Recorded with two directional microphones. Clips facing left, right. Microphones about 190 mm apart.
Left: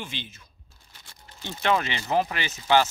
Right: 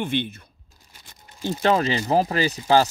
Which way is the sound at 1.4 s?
35° right (ahead or behind).